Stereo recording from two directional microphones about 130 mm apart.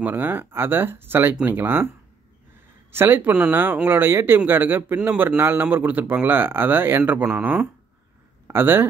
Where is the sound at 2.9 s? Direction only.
15° right (ahead or behind).